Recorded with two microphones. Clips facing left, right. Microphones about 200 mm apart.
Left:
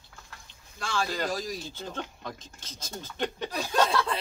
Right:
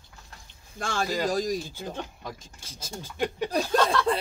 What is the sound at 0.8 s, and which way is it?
Speech, 50° right (ahead or behind).